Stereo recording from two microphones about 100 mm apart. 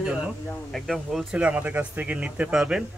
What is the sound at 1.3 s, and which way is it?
Speech, 15° right (ahead or behind).